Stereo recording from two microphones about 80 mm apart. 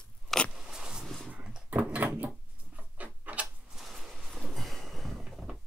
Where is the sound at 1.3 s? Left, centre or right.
Centre.